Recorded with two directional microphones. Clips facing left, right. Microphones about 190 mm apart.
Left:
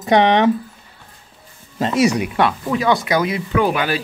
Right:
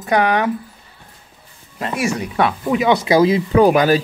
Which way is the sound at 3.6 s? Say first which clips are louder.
Right 7 dB; 40° right (ahead or behind).